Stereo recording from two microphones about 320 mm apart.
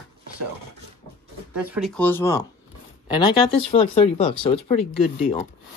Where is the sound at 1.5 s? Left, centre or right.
Centre.